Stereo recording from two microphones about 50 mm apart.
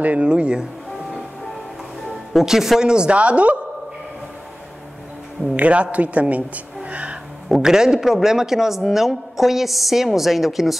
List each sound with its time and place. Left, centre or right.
0.0 s speech: right
0.3 s music: centre
2.3 s a man's voice: centre
2.9 s speech: right
5.6 s speech: right
7.4 s a man's voice: centre